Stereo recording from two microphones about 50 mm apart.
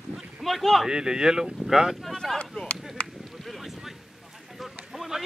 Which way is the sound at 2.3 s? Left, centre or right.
Left.